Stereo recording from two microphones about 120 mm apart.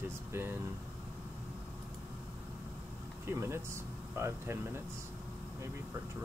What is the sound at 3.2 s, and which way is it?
Speech, 20° right (ahead or behind).